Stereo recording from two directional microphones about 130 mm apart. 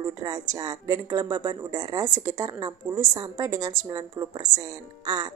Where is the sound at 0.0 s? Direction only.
30° right (ahead or behind).